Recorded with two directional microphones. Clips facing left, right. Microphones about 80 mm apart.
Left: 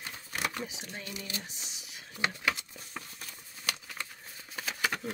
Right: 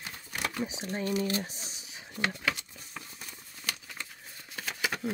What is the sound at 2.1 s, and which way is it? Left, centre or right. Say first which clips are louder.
Speech: even; centre.